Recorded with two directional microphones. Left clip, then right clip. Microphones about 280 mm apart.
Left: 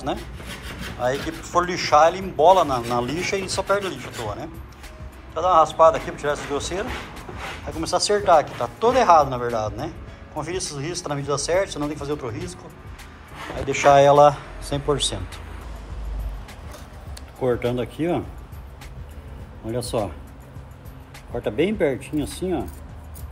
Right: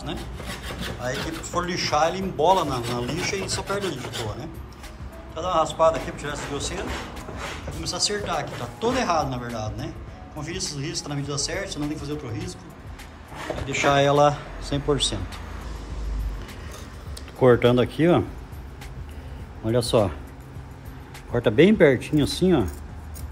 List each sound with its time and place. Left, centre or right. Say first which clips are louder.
0.7 s speech: left 6 dB; centre
13.6 s speech: left 6 dB; centre
17.4 s speech: right 6 dB; right
19.7 s speech: right 5 dB; right
21.4 s speech: right 5 dB; right